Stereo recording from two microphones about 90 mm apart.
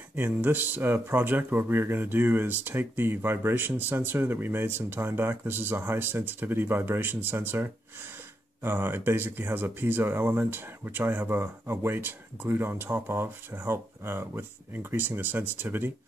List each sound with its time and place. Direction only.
0.1 s speech: 25° right (ahead or behind)